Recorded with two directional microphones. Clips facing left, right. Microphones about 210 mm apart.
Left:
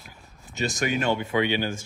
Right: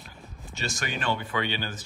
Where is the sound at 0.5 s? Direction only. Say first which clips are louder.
Left 7 dB; 20° left (ahead or behind).